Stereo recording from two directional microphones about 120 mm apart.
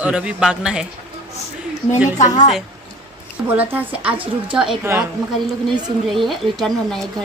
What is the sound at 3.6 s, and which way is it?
Speech, 15° right (ahead or behind).